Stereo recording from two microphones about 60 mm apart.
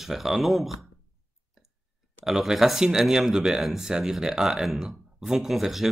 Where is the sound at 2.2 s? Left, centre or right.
Centre.